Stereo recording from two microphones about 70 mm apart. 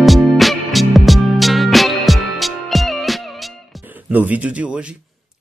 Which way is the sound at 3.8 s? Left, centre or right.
Right.